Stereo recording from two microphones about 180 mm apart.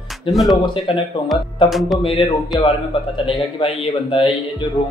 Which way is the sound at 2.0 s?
30° left (ahead or behind).